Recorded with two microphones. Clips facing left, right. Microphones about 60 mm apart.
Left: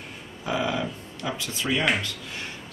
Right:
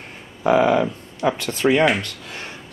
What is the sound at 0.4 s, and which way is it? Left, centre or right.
Speech, right.